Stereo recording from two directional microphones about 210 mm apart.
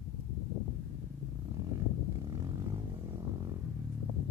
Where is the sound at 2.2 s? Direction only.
20° right (ahead or behind).